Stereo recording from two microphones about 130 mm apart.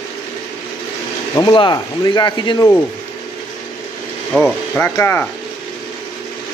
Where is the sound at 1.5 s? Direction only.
35° left (ahead or behind).